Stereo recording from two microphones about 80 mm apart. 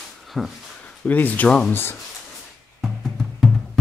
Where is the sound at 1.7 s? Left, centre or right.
Left.